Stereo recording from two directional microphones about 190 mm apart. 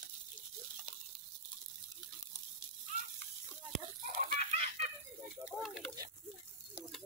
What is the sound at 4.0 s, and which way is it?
Chicken, 35° right (ahead or behind).